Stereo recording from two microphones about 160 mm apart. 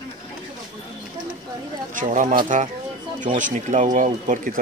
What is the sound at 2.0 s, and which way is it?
Speech, 55° right (ahead or behind).